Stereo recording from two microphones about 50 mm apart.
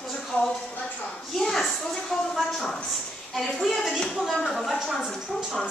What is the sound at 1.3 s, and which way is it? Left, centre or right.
A woman's voice, centre.